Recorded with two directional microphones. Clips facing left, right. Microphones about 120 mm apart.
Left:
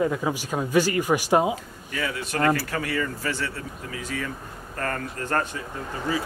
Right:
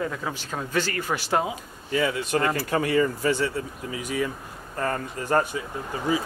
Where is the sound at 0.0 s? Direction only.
15° left (ahead or behind).